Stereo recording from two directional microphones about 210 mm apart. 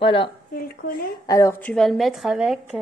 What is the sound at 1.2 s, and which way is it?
A woman's voice, 15° left (ahead or behind).